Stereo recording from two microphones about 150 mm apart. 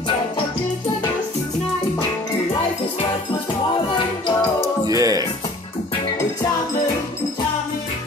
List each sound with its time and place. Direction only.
4.8 s music: 25° right (ahead or behind)